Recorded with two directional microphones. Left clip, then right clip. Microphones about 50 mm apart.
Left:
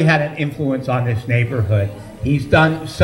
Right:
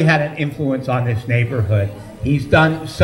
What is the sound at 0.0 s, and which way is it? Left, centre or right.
A man's voice, right.